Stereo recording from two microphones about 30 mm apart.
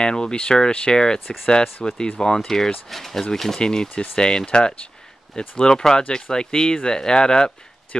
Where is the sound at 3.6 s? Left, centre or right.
Left.